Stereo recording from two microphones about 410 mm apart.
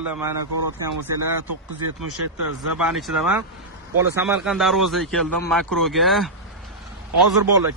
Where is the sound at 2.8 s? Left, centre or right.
Centre.